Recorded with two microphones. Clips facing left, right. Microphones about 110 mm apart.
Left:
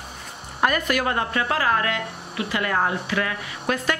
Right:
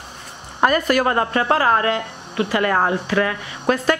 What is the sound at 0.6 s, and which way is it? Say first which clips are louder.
Speech: right 5 dB; 40° right (ahead or behind).